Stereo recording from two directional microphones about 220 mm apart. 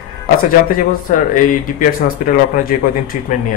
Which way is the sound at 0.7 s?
40° left (ahead or behind).